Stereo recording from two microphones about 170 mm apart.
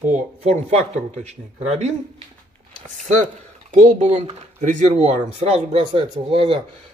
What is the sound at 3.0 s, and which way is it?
Speech, 50° right (ahead or behind).